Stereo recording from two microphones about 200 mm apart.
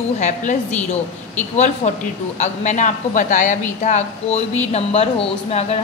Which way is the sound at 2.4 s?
35° left (ahead or behind).